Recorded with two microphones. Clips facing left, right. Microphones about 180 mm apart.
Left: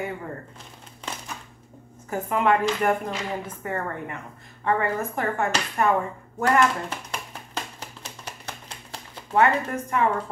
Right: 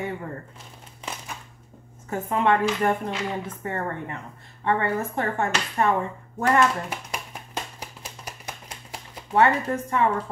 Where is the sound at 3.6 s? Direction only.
30° right (ahead or behind).